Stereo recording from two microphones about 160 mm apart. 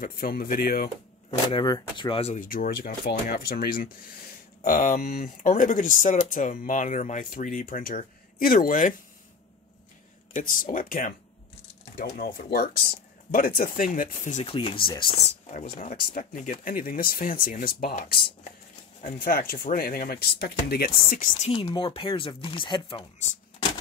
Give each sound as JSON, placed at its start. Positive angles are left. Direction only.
{"t": 0.0, "sound": "speech", "side_deg": 70}
{"t": 1.5, "sound": "speech", "side_deg": 30}
{"t": 2.3, "sound": "speech", "side_deg": 60}
{"t": 4.6, "sound": "speech", "side_deg": 55}
{"t": 10.3, "sound": "speech", "side_deg": 60}
{"t": 12.0, "sound": "speech", "side_deg": 70}
{"t": 14.4, "sound": "speech", "side_deg": 35}
{"t": 16.1, "sound": "speech", "side_deg": 55}
{"t": 21.5, "sound": "speech", "side_deg": 35}